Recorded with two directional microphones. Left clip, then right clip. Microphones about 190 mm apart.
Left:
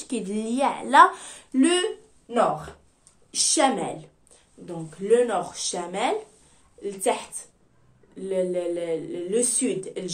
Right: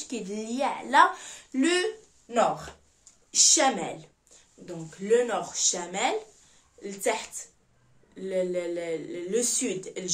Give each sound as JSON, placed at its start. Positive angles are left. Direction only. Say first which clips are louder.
{"t": 0.0, "sound": "a woman's voice", "louder": "left 5 dB", "side_deg": 25}